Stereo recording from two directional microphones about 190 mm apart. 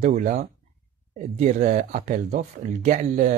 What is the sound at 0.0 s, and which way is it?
Speech, 40° right (ahead or behind).